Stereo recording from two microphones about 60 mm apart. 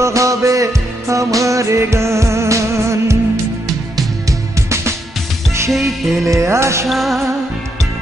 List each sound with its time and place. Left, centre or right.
0.0 s music: right
4.3 s music: right
5.7 s music: centre
6.2 s music: right
6.9 s music: centre